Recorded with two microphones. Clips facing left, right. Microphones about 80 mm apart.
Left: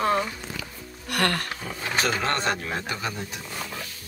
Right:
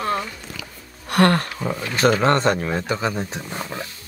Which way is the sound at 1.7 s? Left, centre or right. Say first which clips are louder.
Right 8 dB; right.